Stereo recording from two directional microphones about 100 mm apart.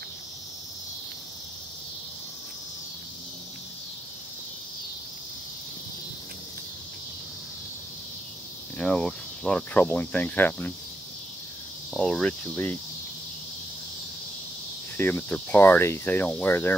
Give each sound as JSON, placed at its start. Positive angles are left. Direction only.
{"t": 8.7, "sound": "speech", "side_deg": 10}
{"t": 12.0, "sound": "speech", "side_deg": 10}
{"t": 15.0, "sound": "cricket", "side_deg": 20}